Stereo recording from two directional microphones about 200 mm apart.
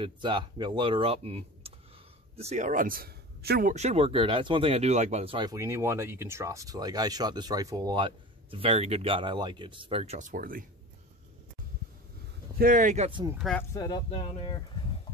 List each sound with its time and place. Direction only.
0.0 s speech: 25° right (ahead or behind); by 3.7 s 50° right (ahead or behind)
3.7 s speech: 30° right (ahead or behind)
12.5 s speech: 45° right (ahead or behind)
13.6 s speech: 20° left (ahead or behind)